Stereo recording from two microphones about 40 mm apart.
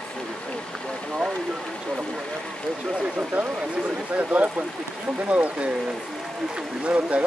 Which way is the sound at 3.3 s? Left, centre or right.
Right.